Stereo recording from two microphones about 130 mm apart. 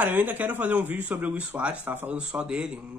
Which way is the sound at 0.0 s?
15° right (ahead or behind).